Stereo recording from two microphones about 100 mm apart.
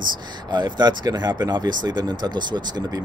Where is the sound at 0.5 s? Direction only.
45° right (ahead or behind).